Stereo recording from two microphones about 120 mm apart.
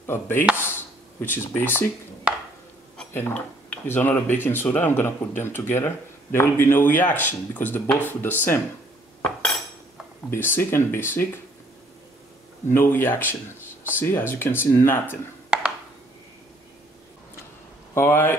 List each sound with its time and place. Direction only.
0.0 s speech: 20° left (ahead or behind)
1.5 s speech: 15° left (ahead or behind)
2.3 s a sound: 10° right (ahead or behind)
3.1 s speech: 15° left (ahead or behind)
9.2 s cutlery: 5° left (ahead or behind)
10.3 s speech: 20° left (ahead or behind)
12.7 s speech: 20° left (ahead or behind)
15.5 s a sound: 5° right (ahead or behind)
17.9 s speech: 20° left (ahead or behind)